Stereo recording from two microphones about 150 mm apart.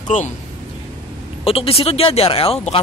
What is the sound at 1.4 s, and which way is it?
Speech, 40° left (ahead or behind).